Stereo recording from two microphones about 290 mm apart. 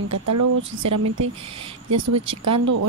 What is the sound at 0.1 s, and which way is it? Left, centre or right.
A woman's voice, right.